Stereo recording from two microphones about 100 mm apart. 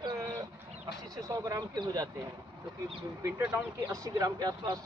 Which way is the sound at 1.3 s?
35° right (ahead or behind).